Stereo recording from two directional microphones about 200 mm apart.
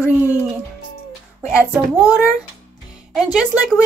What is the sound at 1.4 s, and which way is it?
A child's voice, 5° right (ahead or behind).